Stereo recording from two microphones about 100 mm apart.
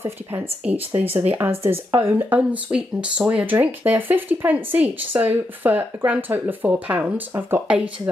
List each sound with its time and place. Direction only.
0.0 s a woman's voice: 20° right (ahead or behind)